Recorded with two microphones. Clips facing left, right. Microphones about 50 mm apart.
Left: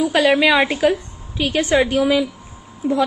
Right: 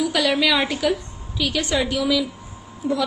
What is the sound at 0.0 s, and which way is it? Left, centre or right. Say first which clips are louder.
A woman's voice: left 5 dB; left.